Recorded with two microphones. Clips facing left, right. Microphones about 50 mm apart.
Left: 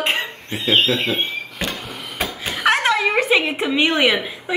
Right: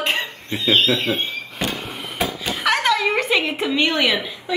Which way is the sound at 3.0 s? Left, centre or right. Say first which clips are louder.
Left 2 dB; centre.